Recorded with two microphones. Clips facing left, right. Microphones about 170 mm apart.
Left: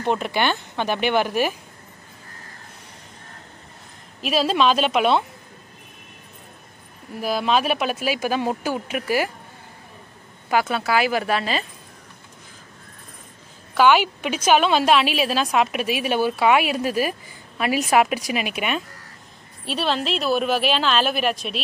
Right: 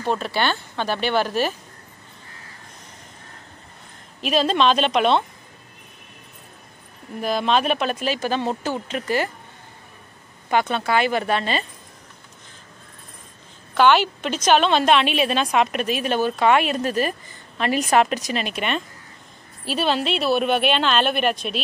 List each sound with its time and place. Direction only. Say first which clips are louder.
0.0 s a woman's voice: left 1 dB; 15° left (ahead or behind)
4.2 s a woman's voice: right 1 dB; 5° left (ahead or behind)
7.2 s a woman's voice: even; 5° left (ahead or behind)
10.5 s a woman's voice: even; 5° left (ahead or behind)
13.7 s a woman's voice: even; 10° left (ahead or behind)